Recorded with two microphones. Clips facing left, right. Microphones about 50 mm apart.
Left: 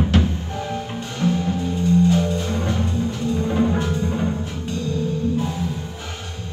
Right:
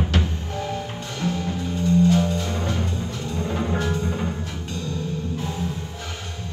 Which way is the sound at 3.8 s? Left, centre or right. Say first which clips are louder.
Left 2 dB; left.